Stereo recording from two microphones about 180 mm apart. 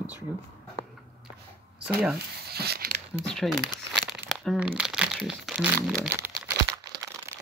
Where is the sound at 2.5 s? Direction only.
60° right (ahead or behind).